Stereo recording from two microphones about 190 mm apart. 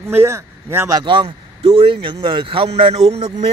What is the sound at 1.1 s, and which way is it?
A man's voice, 30° right (ahead or behind).